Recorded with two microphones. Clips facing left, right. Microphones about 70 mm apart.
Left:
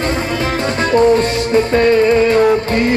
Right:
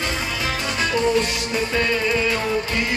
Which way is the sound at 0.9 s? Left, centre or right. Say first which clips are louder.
Left 10 dB; left.